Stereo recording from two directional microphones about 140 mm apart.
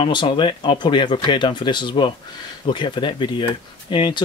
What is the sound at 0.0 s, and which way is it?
Speech, 35° left (ahead or behind).